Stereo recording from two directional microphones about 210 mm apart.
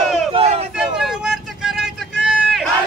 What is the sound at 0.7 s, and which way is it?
Vehicle, 5° right (ahead or behind).